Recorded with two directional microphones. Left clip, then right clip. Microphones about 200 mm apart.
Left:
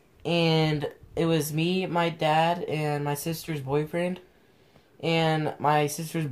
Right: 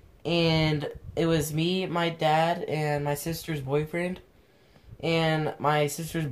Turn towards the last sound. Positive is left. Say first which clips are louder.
# even
turn(degrees=5)  # may be behind; listen again after turning